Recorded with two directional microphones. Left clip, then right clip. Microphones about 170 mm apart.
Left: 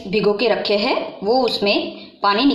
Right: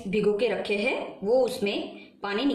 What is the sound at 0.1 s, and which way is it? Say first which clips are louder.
Speech: left 8 dB; 30° left (ahead or behind).